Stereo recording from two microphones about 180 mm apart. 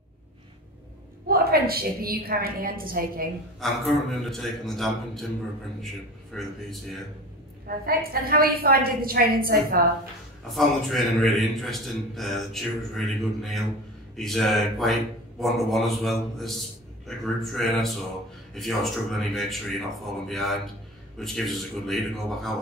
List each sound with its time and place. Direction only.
1.2 s a woman's voice: 55° right (ahead or behind)
3.6 s a man's voice: centre (ahead or behind)
6.3 s a man's voice: centre (ahead or behind)
7.6 s a woman's voice: 55° right (ahead or behind)
10.5 s a man's voice: centre (ahead or behind)
21.8 s a man's voice: centre (ahead or behind)